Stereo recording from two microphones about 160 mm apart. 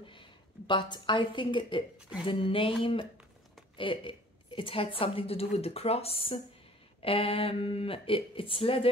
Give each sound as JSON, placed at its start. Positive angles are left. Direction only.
{"t": 0.0, "sound": "a woman's voice", "side_deg": 30}